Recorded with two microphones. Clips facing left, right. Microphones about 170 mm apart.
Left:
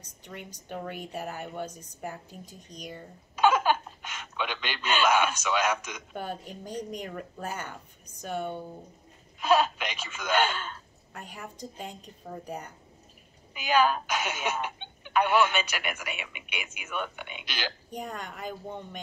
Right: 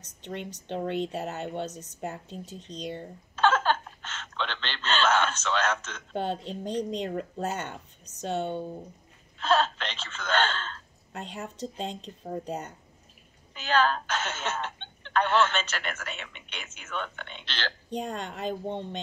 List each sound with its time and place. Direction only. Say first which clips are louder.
0.2 s speech: right 7 dB; 25° right (ahead or behind)
3.3 s a sound: left 1 dB; 10° left (ahead or behind)
6.1 s speech: right 7 dB; 25° right (ahead or behind)
9.4 s speech: left 1 dB; 10° left (ahead or behind)
11.1 s speech: right 6 dB; 25° right (ahead or behind)
12.4 s speech: right 3 dB; 25° right (ahead or behind)
13.5 s speech: left 1 dB; 10° left (ahead or behind)
17.9 s speech: right 8 dB; 30° right (ahead or behind)